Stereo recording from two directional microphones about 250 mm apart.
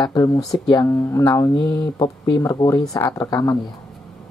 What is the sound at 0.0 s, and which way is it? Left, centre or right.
Speech, centre.